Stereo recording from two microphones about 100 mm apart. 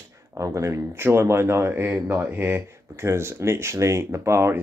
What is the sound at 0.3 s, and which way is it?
Speech, 30° right (ahead or behind).